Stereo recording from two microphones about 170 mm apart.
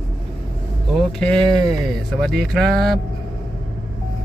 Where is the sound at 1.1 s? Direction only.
5° left (ahead or behind).